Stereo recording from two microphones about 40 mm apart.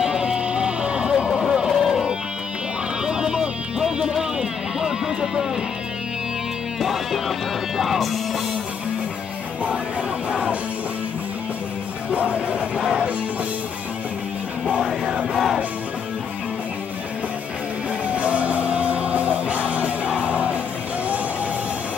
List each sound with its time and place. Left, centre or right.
0.0 s music: right
1.3 s a sound: centre
3.1 s music: right
6.8 s music: centre
10.3 s music: right
12.1 s music: right
12.7 s music: centre
14.8 s music: centre
15.3 s music: centre
18.1 s music: right